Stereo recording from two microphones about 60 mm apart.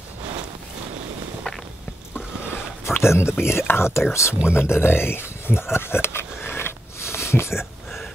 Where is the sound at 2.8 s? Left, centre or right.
Left.